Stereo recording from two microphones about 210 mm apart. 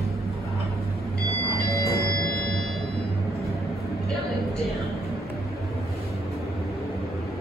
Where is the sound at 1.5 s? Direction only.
45° left (ahead or behind).